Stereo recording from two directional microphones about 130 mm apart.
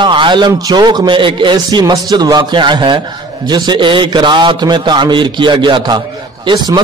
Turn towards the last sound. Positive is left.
turn(degrees=-35)  # may be behind; listen again after turning